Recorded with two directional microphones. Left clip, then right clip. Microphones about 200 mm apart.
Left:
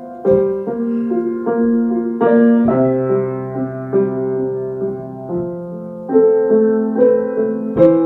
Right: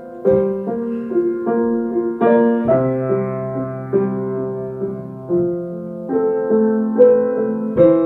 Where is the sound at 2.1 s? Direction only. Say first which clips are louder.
Left 2 dB; 15° left (ahead or behind).